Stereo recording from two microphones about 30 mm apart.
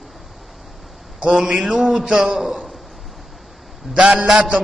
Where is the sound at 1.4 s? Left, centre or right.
Centre.